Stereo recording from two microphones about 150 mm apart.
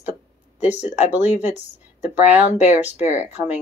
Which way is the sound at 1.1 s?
10° right (ahead or behind).